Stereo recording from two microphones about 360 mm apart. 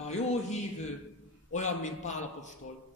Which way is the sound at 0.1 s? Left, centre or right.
Centre.